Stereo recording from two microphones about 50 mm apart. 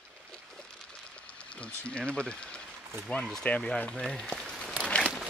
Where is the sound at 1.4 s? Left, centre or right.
Left.